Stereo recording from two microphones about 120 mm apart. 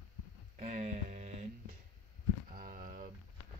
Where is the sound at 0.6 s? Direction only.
65° right (ahead or behind).